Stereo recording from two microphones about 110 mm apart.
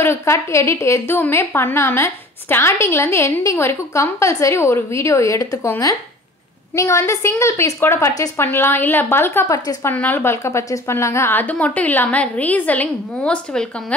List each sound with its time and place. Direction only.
0.0 s a woman's voice: 25° left (ahead or behind); by 13.9 s 10° left (ahead or behind)